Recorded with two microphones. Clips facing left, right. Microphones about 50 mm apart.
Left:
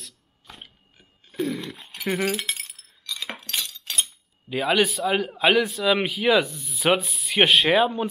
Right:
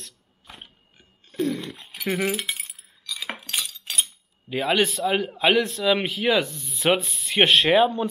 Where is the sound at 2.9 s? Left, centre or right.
Centre.